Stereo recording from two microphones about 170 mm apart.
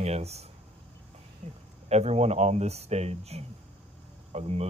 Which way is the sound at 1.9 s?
40° right (ahead or behind).